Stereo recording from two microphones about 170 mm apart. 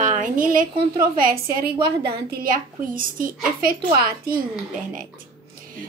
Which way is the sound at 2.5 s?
55° right (ahead or behind).